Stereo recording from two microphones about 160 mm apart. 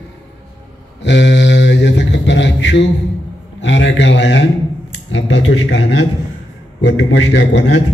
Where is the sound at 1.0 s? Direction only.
90° left.